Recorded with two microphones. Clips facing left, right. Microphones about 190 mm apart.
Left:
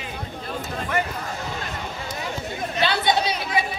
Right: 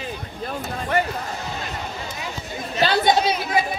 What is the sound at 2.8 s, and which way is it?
Speech, 45° right (ahead or behind).